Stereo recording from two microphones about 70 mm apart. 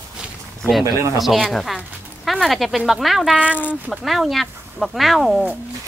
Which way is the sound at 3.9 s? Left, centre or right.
Centre.